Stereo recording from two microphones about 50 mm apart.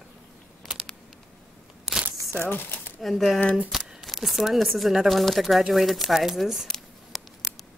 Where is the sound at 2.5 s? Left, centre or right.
Left.